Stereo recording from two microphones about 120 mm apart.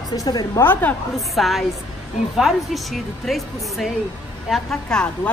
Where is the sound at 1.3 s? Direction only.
Centre (ahead or behind).